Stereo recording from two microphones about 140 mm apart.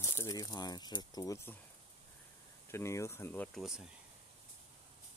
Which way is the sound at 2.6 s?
20° left (ahead or behind).